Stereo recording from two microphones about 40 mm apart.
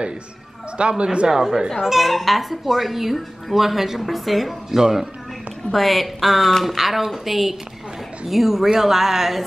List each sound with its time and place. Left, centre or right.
0.7 s speech: right
1.3 s speech: centre
5.7 s speech: centre